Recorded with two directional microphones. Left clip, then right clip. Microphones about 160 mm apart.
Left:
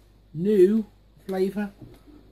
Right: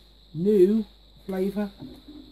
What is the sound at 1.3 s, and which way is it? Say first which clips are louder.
Speech: left 2 dB; 25° right (ahead or behind).